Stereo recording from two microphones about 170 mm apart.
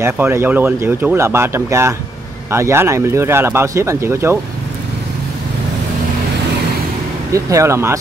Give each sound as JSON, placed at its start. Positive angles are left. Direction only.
{"t": 0.0, "sound": "speech", "side_deg": -15}
{"t": 7.3, "sound": "speech", "side_deg": -20}